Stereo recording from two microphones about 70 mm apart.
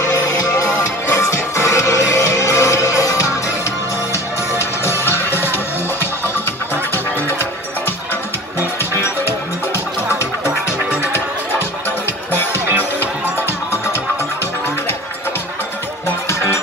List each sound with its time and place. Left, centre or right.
0.0 s music: left
8.5 s music: left
16.3 s music: left